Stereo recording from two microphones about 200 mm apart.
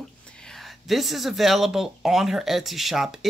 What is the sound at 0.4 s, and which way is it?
Speech, centre (ahead or behind).